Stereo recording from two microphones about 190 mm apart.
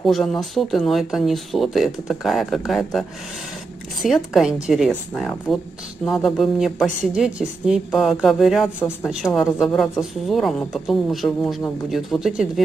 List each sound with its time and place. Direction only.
0.0 s speech: centre (ahead or behind)